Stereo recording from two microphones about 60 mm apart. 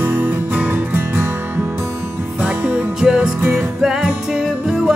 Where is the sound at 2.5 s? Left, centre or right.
Right.